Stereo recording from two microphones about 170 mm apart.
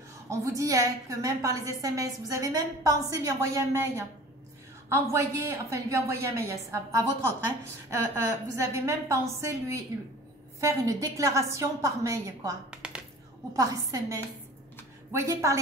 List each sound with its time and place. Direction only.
0.3 s a woman's voice: 20° right (ahead or behind)
5.1 s a woman's voice: 15° right (ahead or behind)
12.7 s a sound: 5° right (ahead or behind)
13.5 s a woman's voice: 20° right (ahead or behind)